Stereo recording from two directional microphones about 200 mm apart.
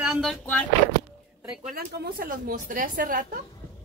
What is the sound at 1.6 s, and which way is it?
Speech, 50° right (ahead or behind).